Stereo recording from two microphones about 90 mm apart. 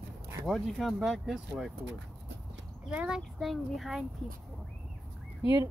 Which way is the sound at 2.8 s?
10° right (ahead or behind).